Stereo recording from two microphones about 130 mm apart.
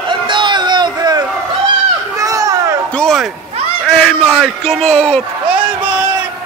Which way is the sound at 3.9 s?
5° left (ahead or behind).